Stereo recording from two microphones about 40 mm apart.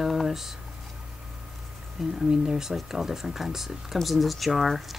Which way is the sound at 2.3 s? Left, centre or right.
Right.